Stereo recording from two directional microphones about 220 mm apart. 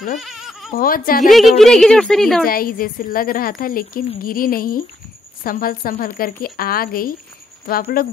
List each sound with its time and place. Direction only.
0.2 s bleat: centre (ahead or behind)
0.7 s a woman's voice: 40° left (ahead or behind)
1.3 s speech: centre (ahead or behind)
2.4 s a woman's voice: 40° left (ahead or behind)